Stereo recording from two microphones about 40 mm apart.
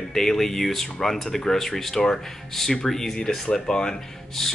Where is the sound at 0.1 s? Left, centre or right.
Centre.